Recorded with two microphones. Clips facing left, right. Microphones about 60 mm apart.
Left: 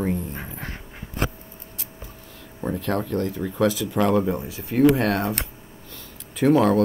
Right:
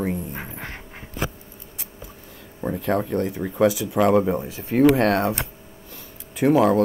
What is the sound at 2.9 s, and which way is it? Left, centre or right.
Speech, centre.